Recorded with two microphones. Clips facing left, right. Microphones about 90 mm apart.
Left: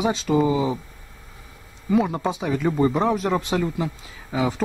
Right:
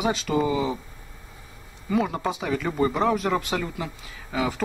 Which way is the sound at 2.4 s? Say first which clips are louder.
Left 4 dB; 10° left (ahead or behind).